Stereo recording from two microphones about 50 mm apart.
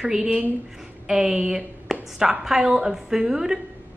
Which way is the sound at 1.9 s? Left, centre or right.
Centre.